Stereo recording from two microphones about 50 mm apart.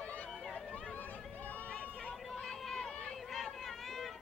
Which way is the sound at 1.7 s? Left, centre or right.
Left.